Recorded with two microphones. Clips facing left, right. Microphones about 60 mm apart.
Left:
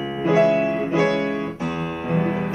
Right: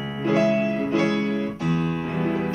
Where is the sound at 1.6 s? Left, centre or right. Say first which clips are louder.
Right 2 dB; centre.